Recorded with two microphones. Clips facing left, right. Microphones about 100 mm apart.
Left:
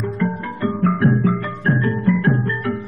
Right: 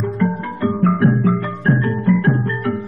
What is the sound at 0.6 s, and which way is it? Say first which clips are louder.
Music: right 2 dB; 20° right (ahead or behind).